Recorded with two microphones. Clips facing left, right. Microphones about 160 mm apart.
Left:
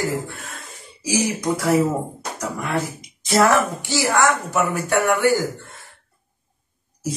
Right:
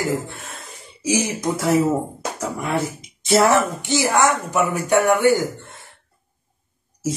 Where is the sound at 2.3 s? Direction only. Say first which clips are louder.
Right 1 dB; 30° right (ahead or behind).